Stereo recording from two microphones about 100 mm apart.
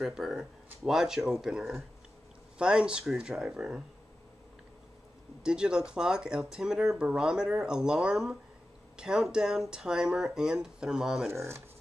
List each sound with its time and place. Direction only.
0.0 s speech: centre (ahead or behind)
5.4 s speech: 10° right (ahead or behind)
11.3 s speech: 25° right (ahead or behind)